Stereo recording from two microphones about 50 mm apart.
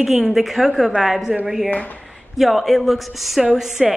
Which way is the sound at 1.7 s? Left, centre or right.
Left.